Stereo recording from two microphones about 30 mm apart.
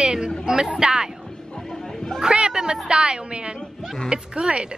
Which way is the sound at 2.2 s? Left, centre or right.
Right.